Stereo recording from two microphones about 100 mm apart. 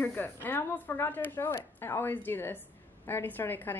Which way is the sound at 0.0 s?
20° left (ahead or behind).